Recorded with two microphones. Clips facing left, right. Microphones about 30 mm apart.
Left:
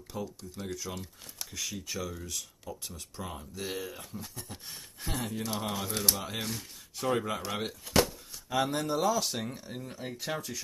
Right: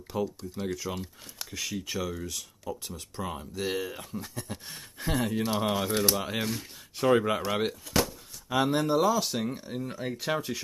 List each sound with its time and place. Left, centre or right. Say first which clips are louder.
0.1 s speech: right 7 dB; centre
2.1 s speech: right 3 dB; centre
2.6 s speech: right 5 dB; right
3.2 s speech: right 6 dB; centre
5.1 s speech: right 7 dB; right